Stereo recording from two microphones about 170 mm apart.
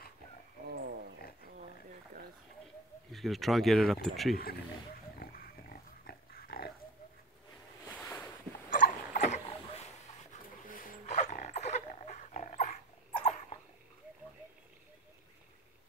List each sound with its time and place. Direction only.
0.7 s wild animals: 70° right (ahead or behind)
3.1 s speech: centre (ahead or behind)
5.2 s pig: 60° left (ahead or behind)
8.0 s a sound: 10° left (ahead or behind)
8.6 s dog: 50° left (ahead or behind)
10.7 s dog: 50° left (ahead or behind)